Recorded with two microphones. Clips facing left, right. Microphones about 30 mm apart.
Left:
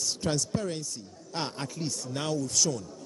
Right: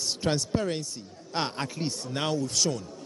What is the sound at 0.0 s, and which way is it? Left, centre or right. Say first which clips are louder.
A man's voice: right 2 dB; right.